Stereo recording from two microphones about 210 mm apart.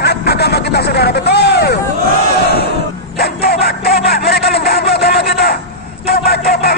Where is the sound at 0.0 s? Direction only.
50° left (ahead or behind).